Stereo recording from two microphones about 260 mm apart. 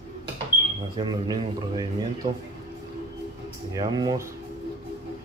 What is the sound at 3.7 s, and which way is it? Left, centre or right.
Speech, centre.